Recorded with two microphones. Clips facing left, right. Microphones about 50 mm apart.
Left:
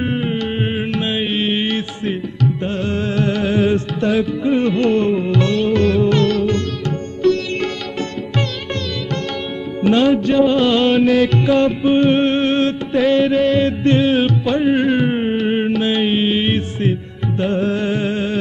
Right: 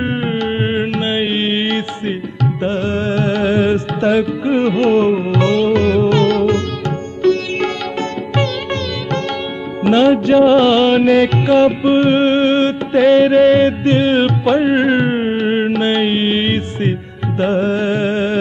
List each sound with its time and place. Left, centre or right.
0.0 s music: right
13.8 s music: centre
14.1 s music: right